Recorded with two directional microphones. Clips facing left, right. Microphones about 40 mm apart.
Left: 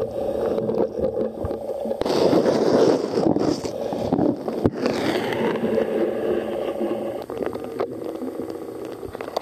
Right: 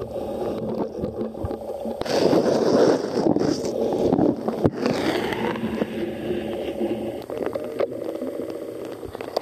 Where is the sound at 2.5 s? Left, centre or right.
Left.